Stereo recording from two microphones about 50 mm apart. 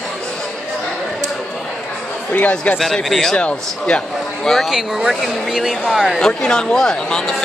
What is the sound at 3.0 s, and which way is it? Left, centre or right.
Speech, centre.